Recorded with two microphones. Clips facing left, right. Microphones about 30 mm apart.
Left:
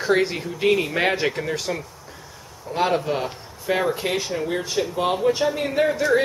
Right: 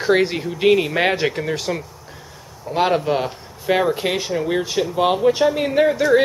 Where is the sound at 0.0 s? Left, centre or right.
Centre.